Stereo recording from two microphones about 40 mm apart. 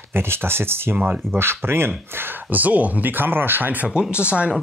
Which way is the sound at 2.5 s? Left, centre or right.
Right.